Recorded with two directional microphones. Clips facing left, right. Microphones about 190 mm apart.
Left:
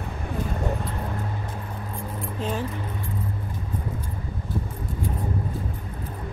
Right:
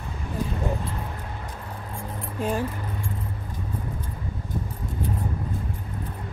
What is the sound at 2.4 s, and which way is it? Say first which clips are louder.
Speech: right 3 dB; 10° right (ahead or behind).